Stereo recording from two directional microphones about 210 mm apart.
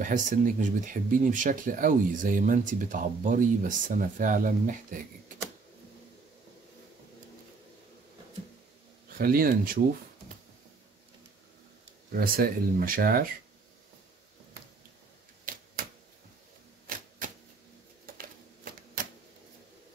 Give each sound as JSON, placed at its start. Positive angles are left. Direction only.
{"t": 0.0, "sound": "speech", "side_deg": -35}
{"t": 9.2, "sound": "speech", "side_deg": -45}
{"t": 12.1, "sound": "speech", "side_deg": -45}
{"t": 18.0, "sound": "a sound", "side_deg": -45}